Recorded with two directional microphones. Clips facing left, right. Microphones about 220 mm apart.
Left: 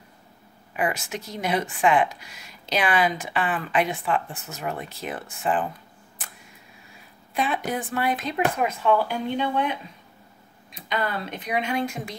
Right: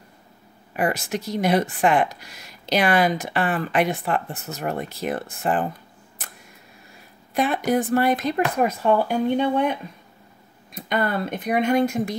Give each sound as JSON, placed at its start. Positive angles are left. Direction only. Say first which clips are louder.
{"t": 0.7, "sound": "speech", "louder": "right 4 dB", "side_deg": -40}
{"t": 7.3, "sound": "speech", "louder": "right 6 dB", "side_deg": -45}
{"t": 10.7, "sound": "speech", "louder": "right 4 dB", "side_deg": -50}